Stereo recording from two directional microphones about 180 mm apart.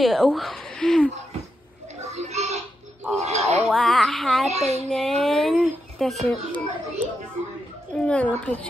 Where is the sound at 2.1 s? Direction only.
40° right (ahead or behind).